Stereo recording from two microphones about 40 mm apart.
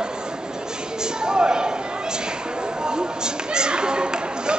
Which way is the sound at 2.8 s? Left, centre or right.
Centre.